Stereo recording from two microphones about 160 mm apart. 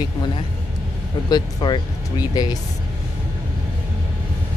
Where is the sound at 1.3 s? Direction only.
30° left (ahead or behind).